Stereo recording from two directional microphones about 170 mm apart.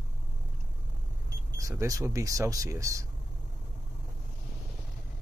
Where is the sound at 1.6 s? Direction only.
15° right (ahead or behind).